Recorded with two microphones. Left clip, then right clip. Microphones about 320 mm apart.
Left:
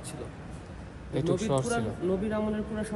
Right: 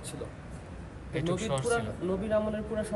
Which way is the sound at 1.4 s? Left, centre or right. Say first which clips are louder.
Left 3 dB; centre.